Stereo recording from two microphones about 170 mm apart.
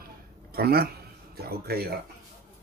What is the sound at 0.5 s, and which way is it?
Speech, 65° right (ahead or behind).